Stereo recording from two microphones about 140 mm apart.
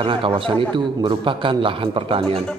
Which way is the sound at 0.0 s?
40° right (ahead or behind).